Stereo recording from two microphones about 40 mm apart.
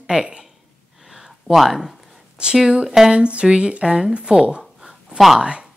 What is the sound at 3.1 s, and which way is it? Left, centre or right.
Speech, right.